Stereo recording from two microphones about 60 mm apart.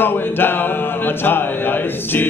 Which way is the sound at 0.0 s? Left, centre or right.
Left.